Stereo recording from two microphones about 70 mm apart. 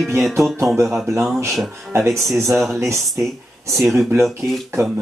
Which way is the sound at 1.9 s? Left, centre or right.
Right.